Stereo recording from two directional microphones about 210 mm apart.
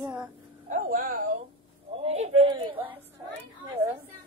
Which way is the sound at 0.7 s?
40° right (ahead or behind).